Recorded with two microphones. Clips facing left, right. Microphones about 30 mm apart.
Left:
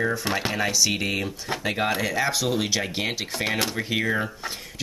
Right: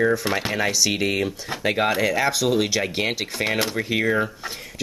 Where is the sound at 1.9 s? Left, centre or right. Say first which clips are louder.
Right 3 dB; centre.